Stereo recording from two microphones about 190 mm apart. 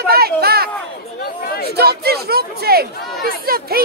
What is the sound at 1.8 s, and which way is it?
Speech, 55° right (ahead or behind).